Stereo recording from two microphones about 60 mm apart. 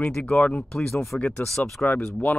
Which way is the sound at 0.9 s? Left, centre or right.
Centre.